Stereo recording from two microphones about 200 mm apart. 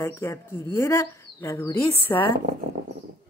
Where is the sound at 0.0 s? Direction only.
15° left (ahead or behind).